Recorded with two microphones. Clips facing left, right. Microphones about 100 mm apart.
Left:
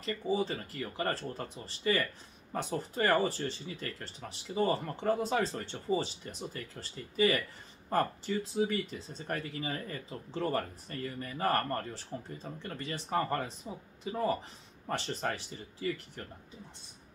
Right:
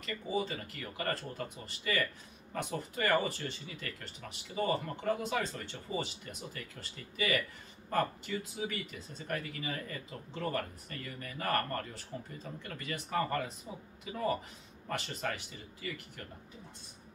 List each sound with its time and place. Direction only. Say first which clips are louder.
0.0 s speech: left 3 dB; 30° left (ahead or behind)
14.9 s speech: left 3 dB; 35° left (ahead or behind)